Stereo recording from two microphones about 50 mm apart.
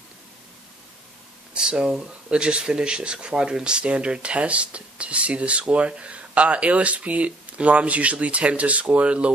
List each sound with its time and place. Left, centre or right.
1.5 s speech: centre